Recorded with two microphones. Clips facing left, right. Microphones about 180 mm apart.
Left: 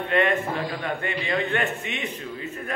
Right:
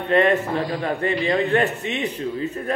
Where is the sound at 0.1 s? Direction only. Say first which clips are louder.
Right 5 dB; 35° right (ahead or behind).